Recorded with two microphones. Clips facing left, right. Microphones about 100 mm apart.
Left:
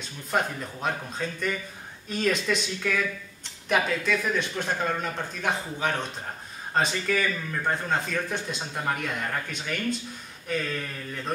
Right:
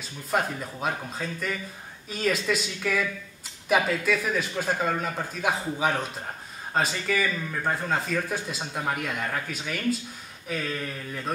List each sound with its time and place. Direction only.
0.0 s speech: 5° right (ahead or behind)